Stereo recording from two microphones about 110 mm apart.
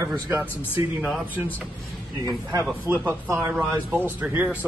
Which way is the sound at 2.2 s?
30° right (ahead or behind).